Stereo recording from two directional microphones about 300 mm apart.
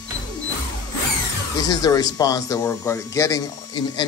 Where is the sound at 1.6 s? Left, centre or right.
Centre.